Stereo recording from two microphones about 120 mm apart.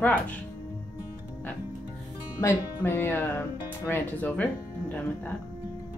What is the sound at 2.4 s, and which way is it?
Speech, 20° left (ahead or behind).